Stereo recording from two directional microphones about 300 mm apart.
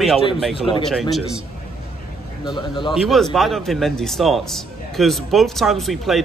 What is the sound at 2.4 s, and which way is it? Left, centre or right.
Speech, centre.